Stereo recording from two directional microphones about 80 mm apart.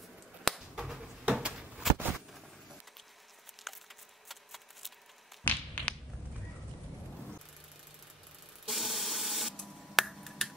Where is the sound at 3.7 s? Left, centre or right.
Centre.